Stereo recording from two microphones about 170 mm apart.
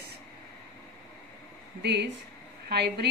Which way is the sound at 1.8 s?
90° right.